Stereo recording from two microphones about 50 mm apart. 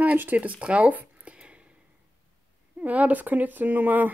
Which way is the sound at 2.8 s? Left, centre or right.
Right.